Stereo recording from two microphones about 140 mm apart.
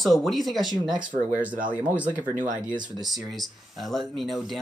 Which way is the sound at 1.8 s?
10° right (ahead or behind).